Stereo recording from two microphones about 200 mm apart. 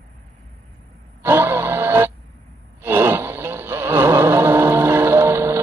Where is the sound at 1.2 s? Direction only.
10° right (ahead or behind).